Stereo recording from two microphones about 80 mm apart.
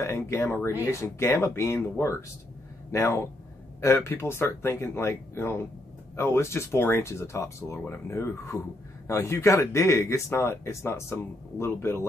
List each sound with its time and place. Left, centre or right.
0.0 s speech: left